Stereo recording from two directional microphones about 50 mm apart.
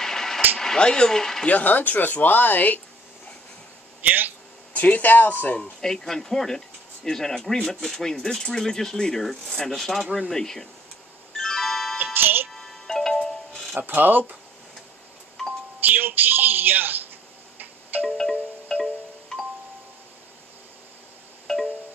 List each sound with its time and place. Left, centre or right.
0.0 s a sound: centre
0.6 s speech: centre
1.5 s speech: left
4.0 s speech: right
4.7 s speech: left
5.6 s speech: centre
11.3 s music: centre
12.0 s music: right
12.4 s music: centre
13.7 s speech: right
15.8 s music: right
18.0 s music: centre
18.7 s wind chime: centre
21.5 s wind chime: centre